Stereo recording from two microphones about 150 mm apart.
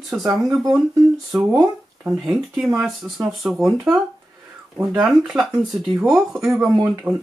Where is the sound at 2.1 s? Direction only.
5° right (ahead or behind).